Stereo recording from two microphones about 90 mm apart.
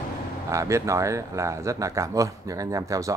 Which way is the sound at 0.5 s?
35° right (ahead or behind).